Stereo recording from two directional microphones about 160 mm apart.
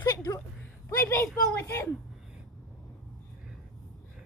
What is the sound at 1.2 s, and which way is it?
Speech, 5° left (ahead or behind).